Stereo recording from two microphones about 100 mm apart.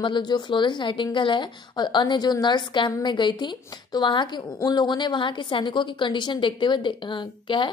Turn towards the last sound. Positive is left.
turn(degrees=55)  # may be behind; listen again after turning